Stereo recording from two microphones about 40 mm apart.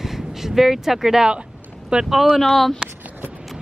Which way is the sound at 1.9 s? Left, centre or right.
Right.